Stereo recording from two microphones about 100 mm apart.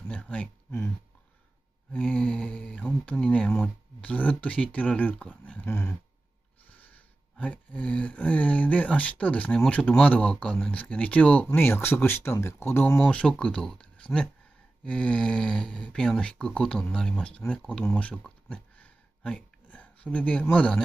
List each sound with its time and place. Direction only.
0.1 s speech: 10° left (ahead or behind)
2.0 s speech: 15° left (ahead or behind)
5.4 s dog: 15° left (ahead or behind)
5.7 s dog: 30° left (ahead or behind)
6.7 s speech: 15° left (ahead or behind)
13.0 s speech: 10° left (ahead or behind)